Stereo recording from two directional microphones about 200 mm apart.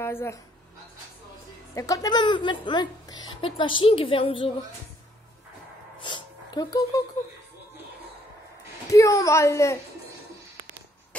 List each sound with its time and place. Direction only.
0.0 s a woman's voice: 10° left (ahead or behind)
1.8 s a woman's voice: 15° left (ahead or behind)
6.0 s a sound: 20° left (ahead or behind)
8.9 s a woman's voice: 15° left (ahead or behind)